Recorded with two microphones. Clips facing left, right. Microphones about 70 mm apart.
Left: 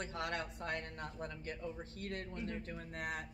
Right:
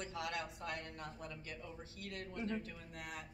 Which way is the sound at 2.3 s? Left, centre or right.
Right.